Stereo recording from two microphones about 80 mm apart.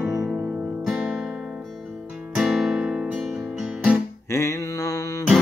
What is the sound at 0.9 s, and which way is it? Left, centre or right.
Guitar, right.